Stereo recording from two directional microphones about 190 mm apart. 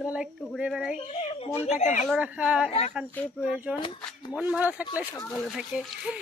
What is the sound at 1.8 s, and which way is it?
Speech, 40° left (ahead or behind).